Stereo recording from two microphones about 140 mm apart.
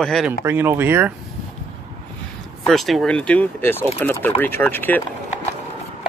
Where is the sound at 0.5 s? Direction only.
15° right (ahead or behind).